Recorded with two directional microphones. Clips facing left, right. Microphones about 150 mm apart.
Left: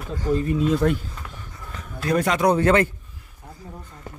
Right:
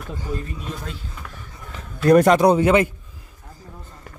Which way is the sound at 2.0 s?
50° right (ahead or behind).